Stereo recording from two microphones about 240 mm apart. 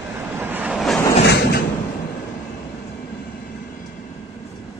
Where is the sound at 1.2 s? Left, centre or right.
Left.